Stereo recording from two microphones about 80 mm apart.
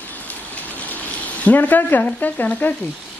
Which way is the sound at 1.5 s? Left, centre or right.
Left.